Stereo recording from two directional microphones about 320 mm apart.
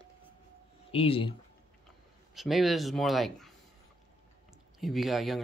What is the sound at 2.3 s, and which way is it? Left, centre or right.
Speech, centre.